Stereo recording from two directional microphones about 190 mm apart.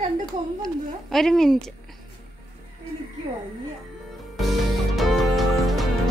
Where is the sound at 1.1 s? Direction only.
Centre (ahead or behind).